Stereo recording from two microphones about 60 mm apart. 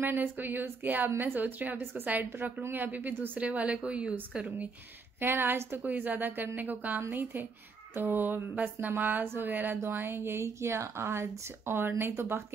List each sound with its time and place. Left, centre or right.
0.0 s a woman's voice: right; by 4.5 s centre
5.2 s a woman's voice: right
5.9 s a woman's voice: right